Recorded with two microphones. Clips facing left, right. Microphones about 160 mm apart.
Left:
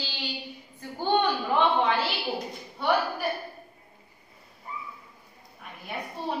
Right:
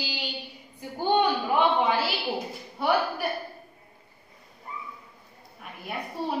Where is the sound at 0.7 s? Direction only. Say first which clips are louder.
Right 2 dB; 15° right (ahead or behind).